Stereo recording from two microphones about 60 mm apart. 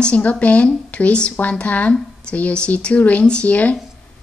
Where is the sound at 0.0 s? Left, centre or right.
Left.